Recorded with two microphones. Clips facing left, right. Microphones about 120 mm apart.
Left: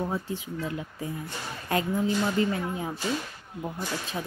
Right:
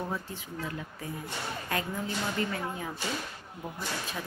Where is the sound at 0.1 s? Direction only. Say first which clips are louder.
Left 5 dB; 20° left (ahead or behind).